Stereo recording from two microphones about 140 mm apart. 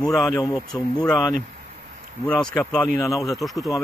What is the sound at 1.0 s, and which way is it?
Speech, 5° left (ahead or behind).